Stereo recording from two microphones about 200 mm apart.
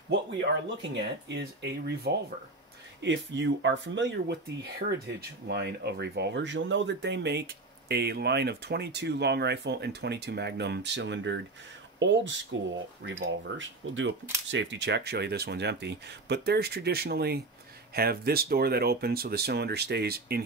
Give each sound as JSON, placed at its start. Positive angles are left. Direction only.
{"t": 0.1, "sound": "speech", "side_deg": -60}